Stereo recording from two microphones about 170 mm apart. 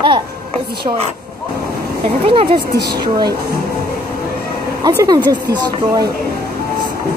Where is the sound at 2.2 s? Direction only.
30° right (ahead or behind).